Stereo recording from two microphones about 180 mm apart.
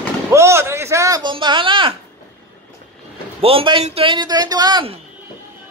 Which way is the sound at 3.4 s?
30° right (ahead or behind).